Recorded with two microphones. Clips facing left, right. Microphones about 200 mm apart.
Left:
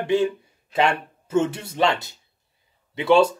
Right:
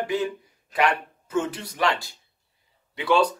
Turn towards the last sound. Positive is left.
turn(degrees=25)  # may be behind; listen again after turning